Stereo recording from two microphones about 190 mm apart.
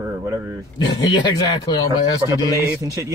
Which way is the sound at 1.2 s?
25° left (ahead or behind).